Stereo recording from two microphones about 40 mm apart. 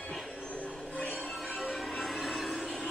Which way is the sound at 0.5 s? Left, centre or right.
Left.